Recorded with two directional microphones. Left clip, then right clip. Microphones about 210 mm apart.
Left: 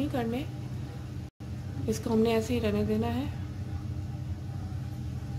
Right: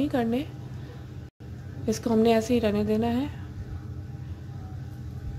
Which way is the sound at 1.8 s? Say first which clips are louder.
Right 5 dB; 20° right (ahead or behind).